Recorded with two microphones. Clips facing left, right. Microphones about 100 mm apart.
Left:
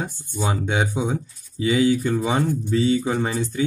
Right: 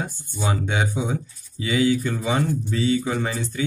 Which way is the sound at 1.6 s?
25° left (ahead or behind).